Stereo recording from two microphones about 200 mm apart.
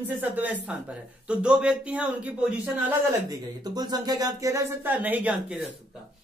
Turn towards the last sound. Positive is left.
turn(degrees=-5)  # may be behind; listen again after turning